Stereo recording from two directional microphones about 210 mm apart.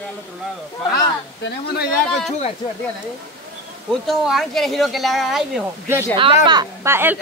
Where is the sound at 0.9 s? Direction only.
50° left (ahead or behind).